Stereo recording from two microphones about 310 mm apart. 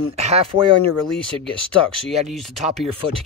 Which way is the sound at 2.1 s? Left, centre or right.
Centre.